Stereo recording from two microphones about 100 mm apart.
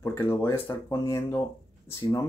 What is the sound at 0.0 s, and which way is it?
Speech, 25° left (ahead or behind).